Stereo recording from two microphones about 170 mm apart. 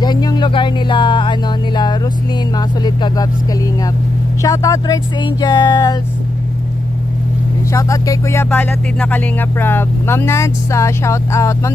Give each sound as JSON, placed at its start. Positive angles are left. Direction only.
{"t": 0.0, "sound": "speech", "side_deg": 25}
{"t": 2.5, "sound": "speech", "side_deg": 25}
{"t": 4.4, "sound": "speech", "side_deg": 20}
{"t": 7.7, "sound": "speech", "side_deg": 20}